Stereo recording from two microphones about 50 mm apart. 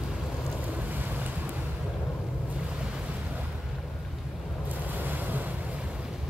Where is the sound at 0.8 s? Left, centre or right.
Right.